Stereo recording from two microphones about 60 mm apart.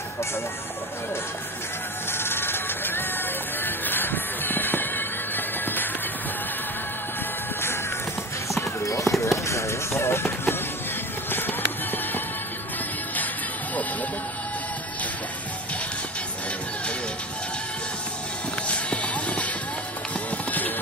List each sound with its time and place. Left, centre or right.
2.1 s music: left
8.8 s run: left
9.2 s a sound: left
11.2 s music: left
18.7 s music: left